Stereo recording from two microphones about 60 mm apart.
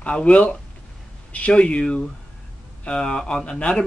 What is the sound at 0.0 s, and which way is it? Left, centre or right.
Speech, centre.